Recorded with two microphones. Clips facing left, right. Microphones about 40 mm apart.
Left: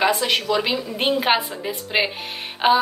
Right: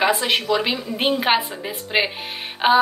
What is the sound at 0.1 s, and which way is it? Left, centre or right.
Speech, centre.